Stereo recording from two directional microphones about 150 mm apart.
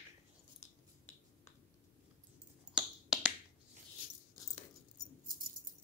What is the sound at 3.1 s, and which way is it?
Finger snapping, 5° right (ahead or behind).